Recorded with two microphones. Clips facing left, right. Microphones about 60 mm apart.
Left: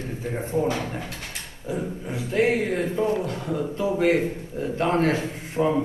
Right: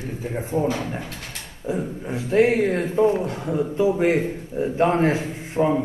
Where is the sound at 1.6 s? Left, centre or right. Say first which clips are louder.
Right 3 dB; right.